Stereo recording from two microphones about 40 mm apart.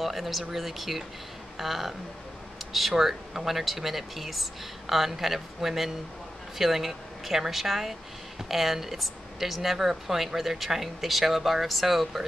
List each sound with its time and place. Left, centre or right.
0.0 s speech: centre